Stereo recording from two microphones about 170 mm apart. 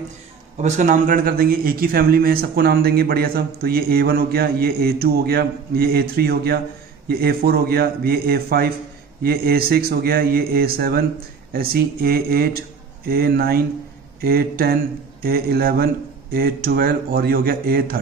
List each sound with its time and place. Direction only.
0.6 s a man's voice: 45° right (ahead or behind); by 17.9 s 60° right (ahead or behind)